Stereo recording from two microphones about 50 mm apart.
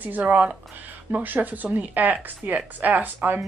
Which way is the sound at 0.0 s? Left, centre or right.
Right.